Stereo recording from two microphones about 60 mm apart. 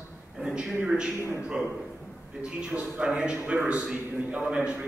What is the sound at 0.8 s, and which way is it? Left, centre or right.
Speech, centre.